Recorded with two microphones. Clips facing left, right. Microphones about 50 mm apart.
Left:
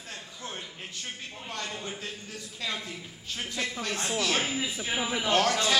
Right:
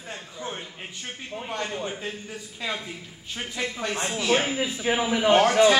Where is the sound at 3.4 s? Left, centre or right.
Centre.